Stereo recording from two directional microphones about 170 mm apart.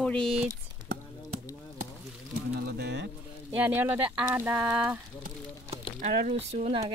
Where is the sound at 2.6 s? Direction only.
70° right (ahead or behind).